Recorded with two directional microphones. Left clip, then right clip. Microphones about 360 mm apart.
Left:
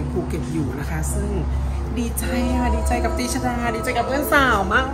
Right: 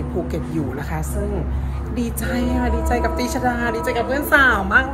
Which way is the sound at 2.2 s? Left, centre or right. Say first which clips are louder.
Even; centre.